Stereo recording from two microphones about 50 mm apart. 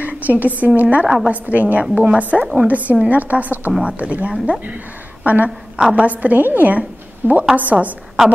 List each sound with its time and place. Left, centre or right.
0.0 s a woman's voice: right
1.0 s a woman's voice: centre
1.3 s a woman's voice: right
5.8 s a woman's voice: centre
6.0 s a woman's voice: right
6.8 s a sound: right
7.5 s a woman's voice: right